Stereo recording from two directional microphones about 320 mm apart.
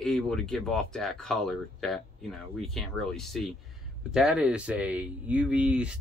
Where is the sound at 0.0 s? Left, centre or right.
Centre.